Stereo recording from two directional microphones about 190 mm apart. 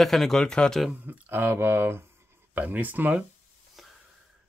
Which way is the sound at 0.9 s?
10° right (ahead or behind).